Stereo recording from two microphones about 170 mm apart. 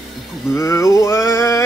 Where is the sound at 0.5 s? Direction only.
15° left (ahead or behind).